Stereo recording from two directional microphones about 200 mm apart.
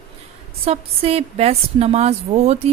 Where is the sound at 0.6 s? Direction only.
30° right (ahead or behind).